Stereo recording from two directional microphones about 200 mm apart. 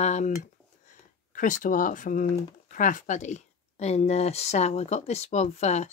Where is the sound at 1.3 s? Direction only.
40° left (ahead or behind).